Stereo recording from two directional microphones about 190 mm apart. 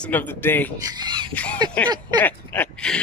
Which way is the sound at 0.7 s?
20° right (ahead or behind).